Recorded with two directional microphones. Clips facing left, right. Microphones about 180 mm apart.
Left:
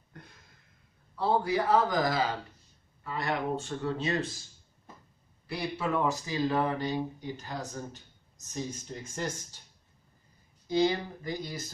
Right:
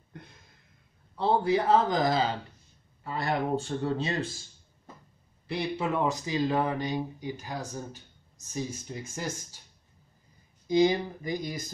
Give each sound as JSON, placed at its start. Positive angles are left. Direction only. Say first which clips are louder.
{"t": 1.1, "sound": "a man's voice", "louder": "right 2 dB", "side_deg": -25}
{"t": 5.5, "sound": "speech", "louder": "right 2 dB", "side_deg": -20}
{"t": 10.7, "sound": "speech", "louder": "right 4 dB", "side_deg": -15}